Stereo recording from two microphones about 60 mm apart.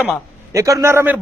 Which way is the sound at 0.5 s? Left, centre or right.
Right.